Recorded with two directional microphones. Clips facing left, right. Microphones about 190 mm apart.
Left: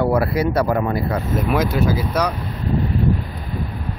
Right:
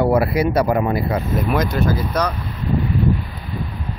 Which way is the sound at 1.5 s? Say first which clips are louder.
Left 1 dB; 5° left (ahead or behind).